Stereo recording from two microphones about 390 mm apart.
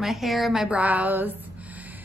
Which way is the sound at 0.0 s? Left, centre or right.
Centre.